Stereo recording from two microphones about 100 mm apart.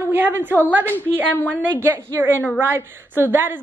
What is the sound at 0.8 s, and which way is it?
Speech, 20° left (ahead or behind).